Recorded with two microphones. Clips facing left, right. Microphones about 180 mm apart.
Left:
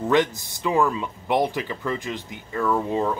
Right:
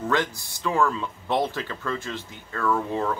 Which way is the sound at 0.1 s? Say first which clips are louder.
Left 7 dB; 20° left (ahead or behind).